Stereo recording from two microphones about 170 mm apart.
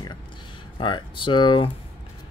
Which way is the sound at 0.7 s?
30° left (ahead or behind).